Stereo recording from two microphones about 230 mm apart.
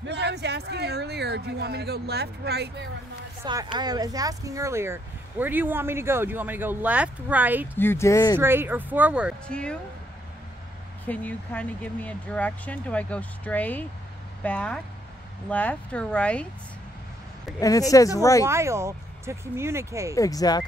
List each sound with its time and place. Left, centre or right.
0.0 s speech: right
3.7 s speech: centre
7.7 s speech: centre
8.4 s speech: centre
11.1 s speech: centre
17.6 s speech: centre
18.5 s speech: centre
20.2 s speech: centre